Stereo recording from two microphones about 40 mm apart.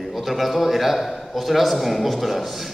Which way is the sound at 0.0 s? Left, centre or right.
Centre.